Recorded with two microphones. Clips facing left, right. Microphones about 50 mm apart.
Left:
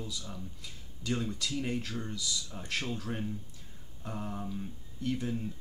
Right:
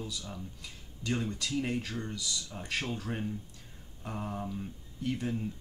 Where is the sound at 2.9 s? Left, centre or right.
Centre.